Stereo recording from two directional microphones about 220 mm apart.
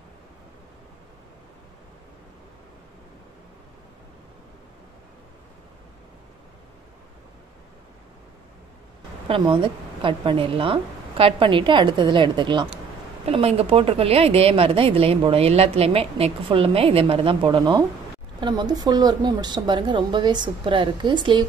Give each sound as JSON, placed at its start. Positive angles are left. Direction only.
{"t": 9.3, "sound": "a woman's voice", "side_deg": -25}